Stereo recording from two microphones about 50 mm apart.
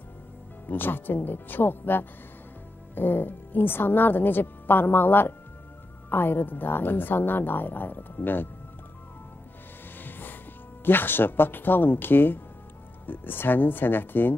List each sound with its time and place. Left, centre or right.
0.7 s a woman's voice: left
10.0 s music: left
10.9 s a woman's voice: left